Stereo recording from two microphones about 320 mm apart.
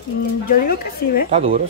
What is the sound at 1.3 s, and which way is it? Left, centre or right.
Speech, centre.